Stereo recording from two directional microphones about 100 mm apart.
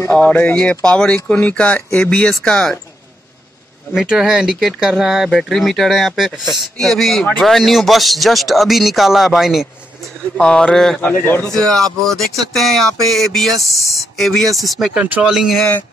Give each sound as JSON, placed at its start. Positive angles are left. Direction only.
{"t": 0.1, "sound": "speech", "side_deg": 15}
{"t": 3.9, "sound": "speech", "side_deg": -5}
{"t": 10.3, "sound": "speech", "side_deg": 10}
{"t": 11.0, "sound": "speech", "side_deg": 20}
{"t": 11.4, "sound": "speech", "side_deg": 5}
{"t": 15.0, "sound": "speech", "side_deg": -15}
{"t": 15.2, "sound": "speech", "side_deg": -5}